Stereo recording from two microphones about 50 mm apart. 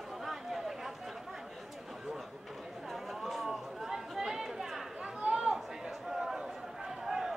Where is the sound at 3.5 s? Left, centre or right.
Centre.